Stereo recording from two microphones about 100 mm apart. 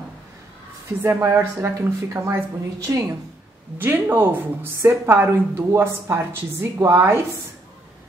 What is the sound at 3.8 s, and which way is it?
A woman's voice, 20° right (ahead or behind).